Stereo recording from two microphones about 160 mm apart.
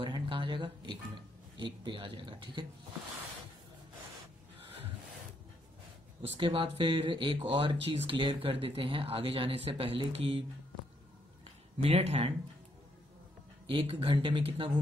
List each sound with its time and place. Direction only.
0.0 s a sound: 30° right (ahead or behind)
6.4 s speech: 30° right (ahead or behind)
11.8 s speech: 40° right (ahead or behind)
13.7 s speech: 30° right (ahead or behind)